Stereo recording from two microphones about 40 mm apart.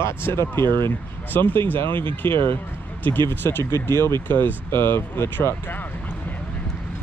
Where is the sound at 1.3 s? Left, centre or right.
Left.